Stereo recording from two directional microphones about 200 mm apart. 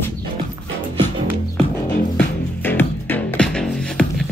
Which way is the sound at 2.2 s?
10° left (ahead or behind).